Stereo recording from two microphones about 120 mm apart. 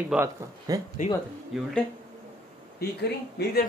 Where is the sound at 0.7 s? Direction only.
30° right (ahead or behind).